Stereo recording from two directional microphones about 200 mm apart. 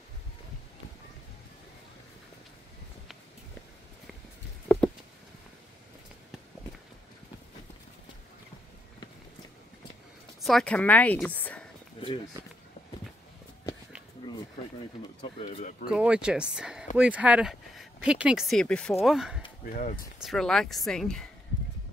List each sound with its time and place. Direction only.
4.6 s a sound: 5° left (ahead or behind)
10.4 s speech: 5° left (ahead or behind)
12.4 s speech: 20° right (ahead or behind)
14.2 s a sound: 25° left (ahead or behind)
15.9 s speech: 5° right (ahead or behind)
19.6 s speech: 40° left (ahead or behind)
20.2 s speech: centre (ahead or behind)